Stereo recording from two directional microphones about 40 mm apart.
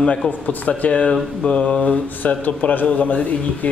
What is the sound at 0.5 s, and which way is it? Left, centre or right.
Speech, left.